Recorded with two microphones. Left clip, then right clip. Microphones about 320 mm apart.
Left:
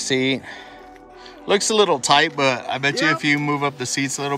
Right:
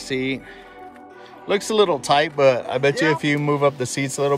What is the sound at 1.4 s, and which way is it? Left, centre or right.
Speech, centre.